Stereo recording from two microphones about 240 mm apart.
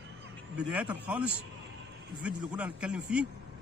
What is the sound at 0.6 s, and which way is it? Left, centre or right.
A man's voice, centre.